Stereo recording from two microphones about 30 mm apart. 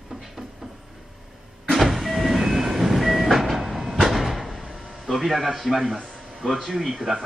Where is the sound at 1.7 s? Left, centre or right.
Centre.